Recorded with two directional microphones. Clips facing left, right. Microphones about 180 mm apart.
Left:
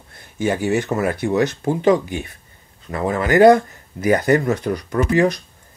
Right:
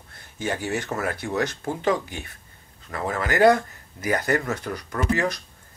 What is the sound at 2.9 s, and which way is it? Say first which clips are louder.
Speech: left 8 dB; 20° left (ahead or behind).